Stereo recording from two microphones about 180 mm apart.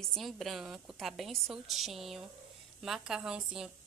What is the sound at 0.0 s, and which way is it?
A woman's voice, centre (ahead or behind).